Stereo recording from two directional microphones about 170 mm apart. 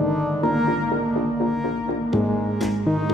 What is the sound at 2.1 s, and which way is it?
Music, centre (ahead or behind).